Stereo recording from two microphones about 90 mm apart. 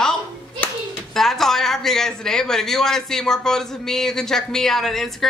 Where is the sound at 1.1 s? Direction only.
5° left (ahead or behind).